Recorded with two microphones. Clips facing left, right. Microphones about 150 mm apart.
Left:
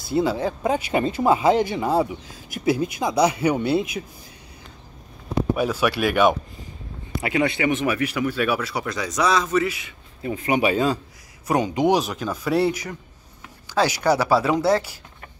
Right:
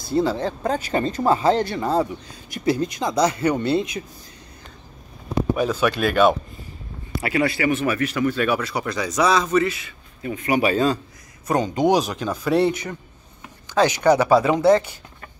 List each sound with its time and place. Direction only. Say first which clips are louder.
0.1 s speech: even; 10° left (ahead or behind)
5.6 s speech: right 1 dB; 10° left (ahead or behind)
10.2 s speech: right 1 dB; 25° left (ahead or behind)
10.6 s speech: right 2 dB; 10° left (ahead or behind)